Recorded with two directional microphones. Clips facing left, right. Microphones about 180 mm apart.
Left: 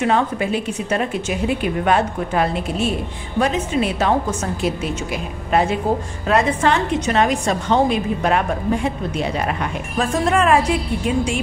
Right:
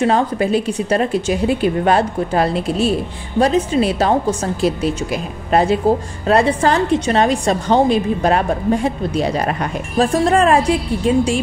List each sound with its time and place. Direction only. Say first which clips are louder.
0.0 s a woman's voice: right 3 dB; 35° right (ahead or behind)